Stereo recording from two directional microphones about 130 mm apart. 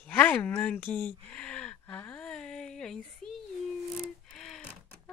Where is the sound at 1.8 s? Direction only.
10° left (ahead or behind).